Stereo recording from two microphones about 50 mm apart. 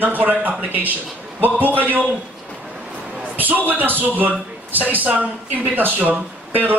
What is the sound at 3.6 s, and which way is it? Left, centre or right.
A man's voice, right.